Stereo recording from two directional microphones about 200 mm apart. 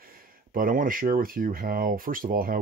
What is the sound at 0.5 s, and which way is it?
Speech, 45° right (ahead or behind).